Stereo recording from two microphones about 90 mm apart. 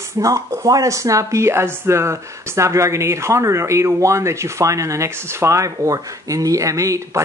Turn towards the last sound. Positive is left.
turn(degrees=-35)  # may be behind; listen again after turning